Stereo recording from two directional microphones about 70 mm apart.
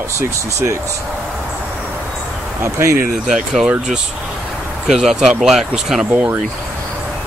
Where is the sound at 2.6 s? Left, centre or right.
Right.